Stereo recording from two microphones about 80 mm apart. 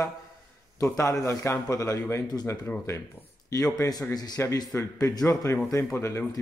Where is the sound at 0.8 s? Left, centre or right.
Left.